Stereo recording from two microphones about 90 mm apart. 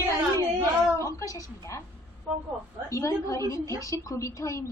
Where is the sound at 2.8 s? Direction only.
35° left (ahead or behind).